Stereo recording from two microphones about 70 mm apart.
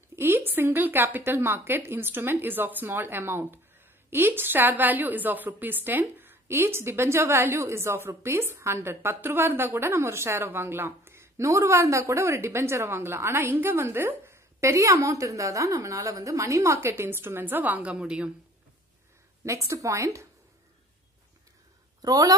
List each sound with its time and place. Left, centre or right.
0.1 s a woman's voice: right; by 18.3 s centre
19.4 s a woman's voice: right
22.0 s a woman's voice: right